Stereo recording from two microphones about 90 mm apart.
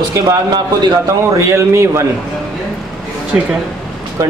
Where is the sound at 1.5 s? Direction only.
30° right (ahead or behind).